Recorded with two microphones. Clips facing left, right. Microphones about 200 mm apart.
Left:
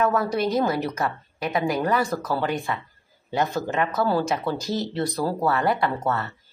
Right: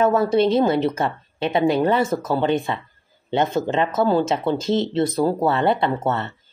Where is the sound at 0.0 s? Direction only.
25° right (ahead or behind).